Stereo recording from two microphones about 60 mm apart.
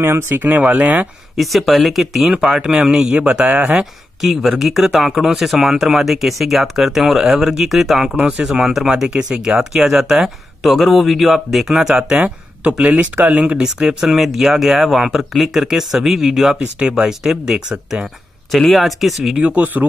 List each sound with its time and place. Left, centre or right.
0.0 s speech: right
0.5 s speech: right
1.3 s speech: centre
2.2 s speech: centre
8.2 s speech: centre
8.5 s speech: centre
12.6 s speech: right; by 16.5 s centre
16.5 s speech: centre
18.5 s speech: centre
19.3 s speech: right